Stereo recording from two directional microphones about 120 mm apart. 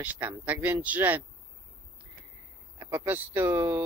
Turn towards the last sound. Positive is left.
turn(degrees=-20)  # may be behind; listen again after turning